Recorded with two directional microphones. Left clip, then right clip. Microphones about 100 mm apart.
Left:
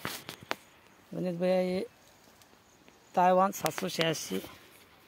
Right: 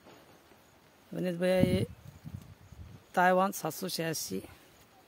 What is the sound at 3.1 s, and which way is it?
Speech, 15° right (ahead or behind).